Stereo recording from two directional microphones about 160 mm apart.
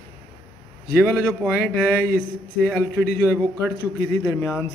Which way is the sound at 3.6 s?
15° left (ahead or behind).